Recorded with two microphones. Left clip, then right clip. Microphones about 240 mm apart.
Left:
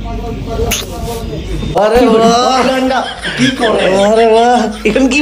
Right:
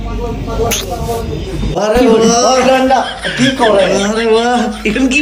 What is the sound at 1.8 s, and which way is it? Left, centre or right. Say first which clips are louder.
Speech: left 1 dB; centre.